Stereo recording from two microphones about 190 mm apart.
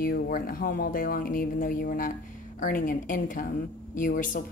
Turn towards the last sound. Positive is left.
turn(degrees=45)  # may be behind; listen again after turning